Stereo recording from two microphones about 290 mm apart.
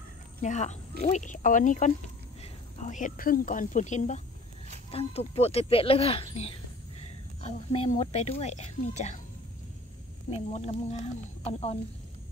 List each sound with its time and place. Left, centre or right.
0.4 s a woman's voice: left
10.3 s a woman's voice: left